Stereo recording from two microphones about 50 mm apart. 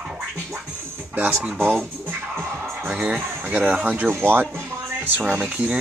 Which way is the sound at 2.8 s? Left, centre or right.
Right.